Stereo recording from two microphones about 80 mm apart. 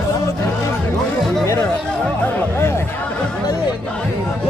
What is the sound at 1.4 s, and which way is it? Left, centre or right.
Chatter, left.